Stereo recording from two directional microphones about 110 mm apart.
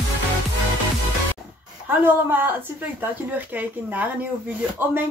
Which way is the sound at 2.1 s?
20° right (ahead or behind).